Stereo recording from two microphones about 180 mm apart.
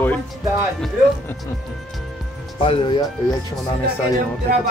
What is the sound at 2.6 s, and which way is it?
Speech, 30° left (ahead or behind).